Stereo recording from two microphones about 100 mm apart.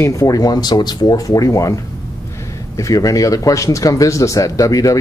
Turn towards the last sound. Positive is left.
turn(degrees=35)  # may be behind; listen again after turning